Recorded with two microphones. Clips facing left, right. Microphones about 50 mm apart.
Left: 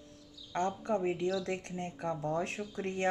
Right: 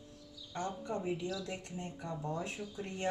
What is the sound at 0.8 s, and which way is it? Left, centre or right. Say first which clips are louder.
Speech: left 6 dB; left.